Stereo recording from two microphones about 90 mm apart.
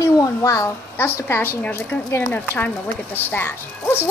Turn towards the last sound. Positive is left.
turn(degrees=25)  # may be behind; listen again after turning